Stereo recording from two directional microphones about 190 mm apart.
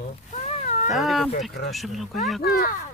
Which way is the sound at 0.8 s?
Centre (ahead or behind).